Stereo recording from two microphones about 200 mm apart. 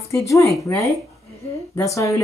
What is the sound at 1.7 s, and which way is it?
Speech, 15° left (ahead or behind).